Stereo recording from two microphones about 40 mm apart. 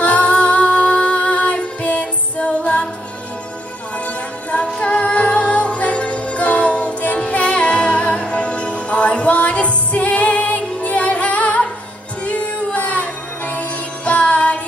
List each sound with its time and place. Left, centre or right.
0.0 s music: left
4.0 s music: left